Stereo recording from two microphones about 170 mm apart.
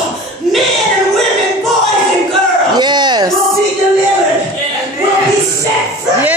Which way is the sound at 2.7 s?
25° right (ahead or behind).